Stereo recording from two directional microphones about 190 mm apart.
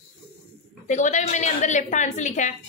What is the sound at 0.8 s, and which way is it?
A woman's voice, 40° left (ahead or behind).